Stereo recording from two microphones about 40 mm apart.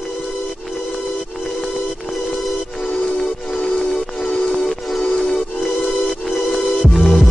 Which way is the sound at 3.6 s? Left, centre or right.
Left.